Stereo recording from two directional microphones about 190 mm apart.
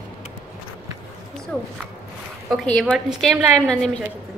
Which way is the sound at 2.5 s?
5° left (ahead or behind).